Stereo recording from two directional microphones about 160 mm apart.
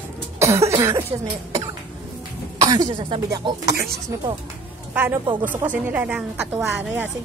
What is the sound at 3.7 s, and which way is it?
Speech, 80° right.